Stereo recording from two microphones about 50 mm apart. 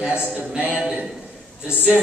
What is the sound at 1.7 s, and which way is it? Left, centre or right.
Speech, right.